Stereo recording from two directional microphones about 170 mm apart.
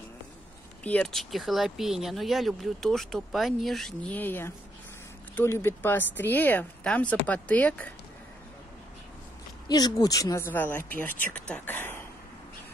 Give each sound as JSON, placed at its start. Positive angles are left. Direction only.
{"t": 0.8, "sound": "speech", "side_deg": 5}
{"t": 9.7, "sound": "speech", "side_deg": 25}